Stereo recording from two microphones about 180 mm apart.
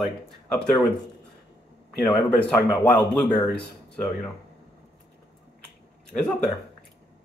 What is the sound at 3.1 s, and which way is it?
Speech, 5° left (ahead or behind).